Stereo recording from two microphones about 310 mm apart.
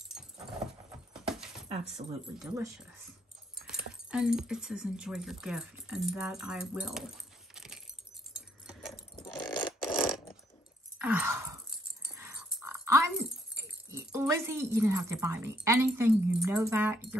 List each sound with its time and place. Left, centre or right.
1.2 s keys jangling: centre
2.4 s speech: centre
7.5 s keys jangling: centre
9.1 s a sound: centre
9.8 s a sound: centre
13.9 s a woman's voice: centre